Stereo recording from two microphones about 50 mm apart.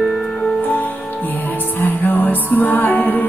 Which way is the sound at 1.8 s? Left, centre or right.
Left.